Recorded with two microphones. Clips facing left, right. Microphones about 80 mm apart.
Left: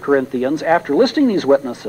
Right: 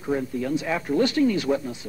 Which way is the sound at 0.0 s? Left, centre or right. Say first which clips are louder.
Left 10 dB; left.